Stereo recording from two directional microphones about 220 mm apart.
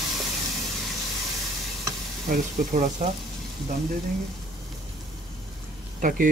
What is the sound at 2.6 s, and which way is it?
Speech, 35° right (ahead or behind).